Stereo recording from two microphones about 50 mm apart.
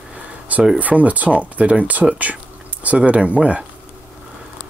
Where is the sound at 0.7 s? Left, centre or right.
Right.